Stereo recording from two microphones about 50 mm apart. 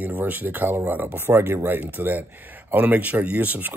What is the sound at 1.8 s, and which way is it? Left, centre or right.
A man's voice, right.